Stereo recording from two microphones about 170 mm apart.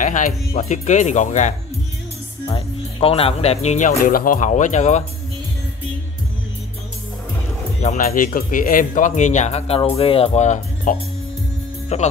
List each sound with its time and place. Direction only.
0.0 s speech: 50° left (ahead or behind)
2.5 s speech: 35° left (ahead or behind)
4.0 s speech: 55° left (ahead or behind)
7.8 s speech: 40° left (ahead or behind)
8.4 s speech: 55° left (ahead or behind)